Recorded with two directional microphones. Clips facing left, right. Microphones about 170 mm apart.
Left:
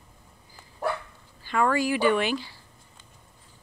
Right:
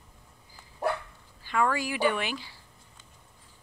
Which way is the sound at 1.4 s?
10° right (ahead or behind).